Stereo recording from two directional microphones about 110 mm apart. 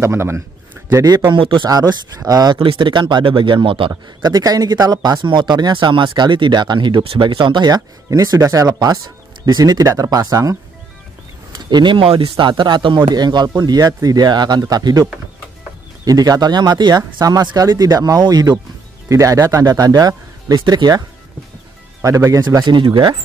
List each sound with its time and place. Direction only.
0.0 s speech: 25° right (ahead or behind)
1.0 s speech: 40° right (ahead or behind)
1.7 s speech: 35° right (ahead or behind); by 3.9 s 55° right (ahead or behind)
4.2 s speech: 35° right (ahead or behind)
11.5 s speech: 45° right (ahead or behind)
16.1 s speech: 35° right (ahead or behind)
22.0 s speech: 30° right (ahead or behind); by 23.1 s 45° right (ahead or behind)